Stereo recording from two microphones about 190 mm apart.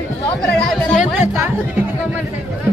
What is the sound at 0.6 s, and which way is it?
Music, 5° left (ahead or behind).